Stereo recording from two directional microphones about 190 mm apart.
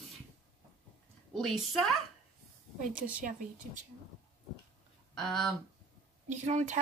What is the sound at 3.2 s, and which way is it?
Speech, 40° right (ahead or behind).